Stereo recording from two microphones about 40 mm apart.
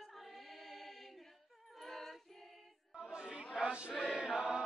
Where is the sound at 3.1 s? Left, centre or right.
Right.